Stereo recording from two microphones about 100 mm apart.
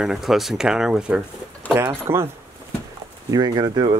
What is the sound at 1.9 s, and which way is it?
Speech, 25° right (ahead or behind).